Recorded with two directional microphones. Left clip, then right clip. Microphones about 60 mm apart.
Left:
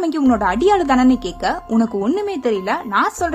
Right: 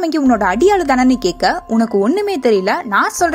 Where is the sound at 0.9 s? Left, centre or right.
Right.